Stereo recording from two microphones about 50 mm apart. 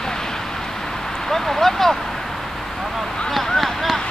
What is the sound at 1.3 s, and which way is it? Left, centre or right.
Speech, centre.